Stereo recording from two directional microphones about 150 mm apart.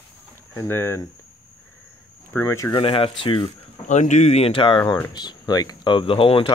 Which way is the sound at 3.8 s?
50° left (ahead or behind).